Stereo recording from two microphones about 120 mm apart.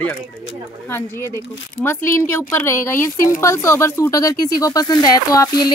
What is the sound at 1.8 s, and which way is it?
Speech, 20° left (ahead or behind).